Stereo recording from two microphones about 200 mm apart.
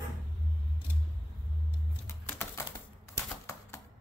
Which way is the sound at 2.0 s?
10° left (ahead or behind).